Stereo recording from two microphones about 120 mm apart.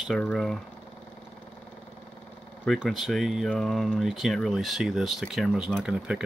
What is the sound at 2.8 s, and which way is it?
Speech, centre (ahead or behind).